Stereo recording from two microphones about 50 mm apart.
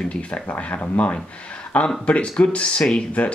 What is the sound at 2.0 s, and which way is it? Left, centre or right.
Speech, left.